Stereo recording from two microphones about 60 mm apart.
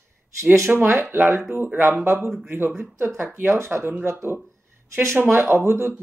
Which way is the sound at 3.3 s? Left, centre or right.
Right.